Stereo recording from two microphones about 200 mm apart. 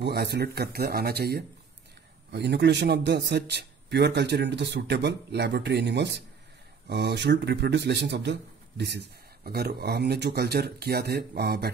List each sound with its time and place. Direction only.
0.0 s speech: 55° right (ahead or behind)